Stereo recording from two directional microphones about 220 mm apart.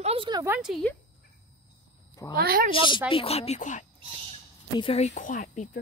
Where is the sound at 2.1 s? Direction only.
15° left (ahead or behind).